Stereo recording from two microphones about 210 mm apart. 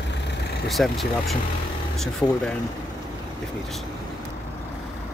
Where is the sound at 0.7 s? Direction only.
Centre (ahead or behind).